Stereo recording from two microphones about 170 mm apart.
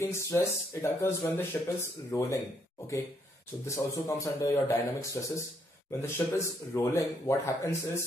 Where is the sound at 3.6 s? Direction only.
15° left (ahead or behind).